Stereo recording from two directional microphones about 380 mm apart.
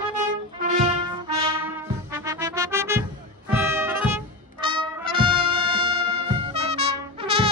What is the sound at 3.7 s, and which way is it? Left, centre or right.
Trumpet, centre.